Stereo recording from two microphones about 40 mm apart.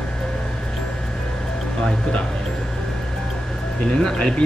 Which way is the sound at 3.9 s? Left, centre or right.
Left.